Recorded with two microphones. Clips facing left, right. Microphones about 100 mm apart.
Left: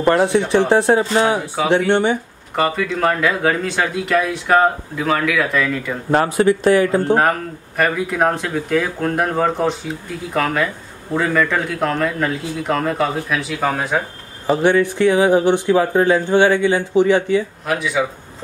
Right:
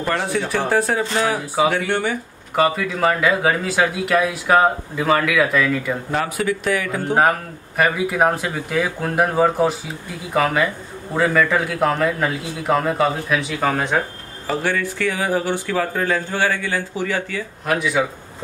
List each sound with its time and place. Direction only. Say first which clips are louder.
0.0 s a man's voice: left 8 dB; 40° left (ahead or behind)
0.3 s speech: left 5 dB; 20° left (ahead or behind)
2.5 s speech: even; 5° right (ahead or behind)
6.1 s a man's voice: left 9 dB; 30° left (ahead or behind)
7.2 s speech: even; 5° right (ahead or behind)
14.5 s speech: left 7 dB; 20° left (ahead or behind)
17.6 s speech: right 5 dB; centre (ahead or behind)